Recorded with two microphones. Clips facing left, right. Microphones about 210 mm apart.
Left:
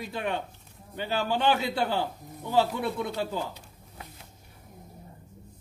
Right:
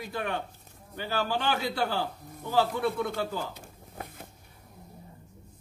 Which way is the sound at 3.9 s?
50° right (ahead or behind).